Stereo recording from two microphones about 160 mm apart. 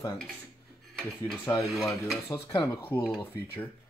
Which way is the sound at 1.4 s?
15° left (ahead or behind).